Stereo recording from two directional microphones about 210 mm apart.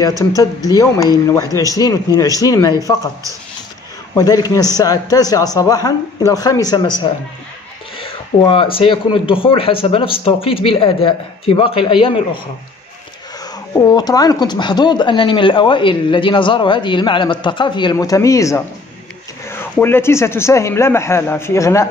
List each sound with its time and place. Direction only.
0.4 s speech: 15° left (ahead or behind)
4.1 s speech: 15° left (ahead or behind)
13.7 s speech: 20° left (ahead or behind)
19.8 s speech: 10° left (ahead or behind)